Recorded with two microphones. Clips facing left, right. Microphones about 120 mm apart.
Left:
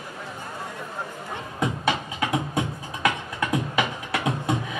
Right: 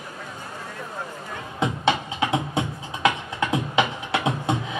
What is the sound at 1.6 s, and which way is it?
Music, 25° right (ahead or behind).